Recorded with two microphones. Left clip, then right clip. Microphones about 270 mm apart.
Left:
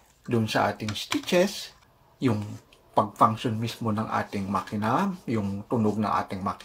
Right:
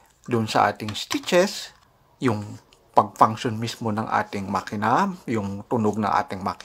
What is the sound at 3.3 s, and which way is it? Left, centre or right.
Speech, right.